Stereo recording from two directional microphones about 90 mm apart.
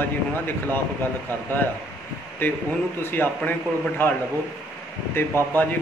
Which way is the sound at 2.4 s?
25° left (ahead or behind).